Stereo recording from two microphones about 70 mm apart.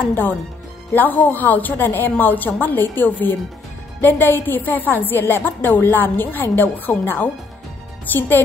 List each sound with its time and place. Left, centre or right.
0.1 s a woman's voice: left